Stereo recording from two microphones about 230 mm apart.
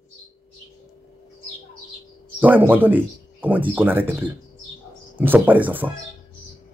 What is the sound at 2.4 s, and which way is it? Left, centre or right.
Speech, centre.